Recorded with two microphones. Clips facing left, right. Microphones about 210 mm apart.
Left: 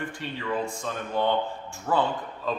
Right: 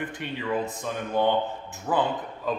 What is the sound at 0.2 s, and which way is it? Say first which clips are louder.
A man's voice: right 2 dB; 15° right (ahead or behind).